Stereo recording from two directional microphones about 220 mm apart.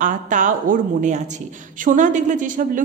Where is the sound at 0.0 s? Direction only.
35° right (ahead or behind).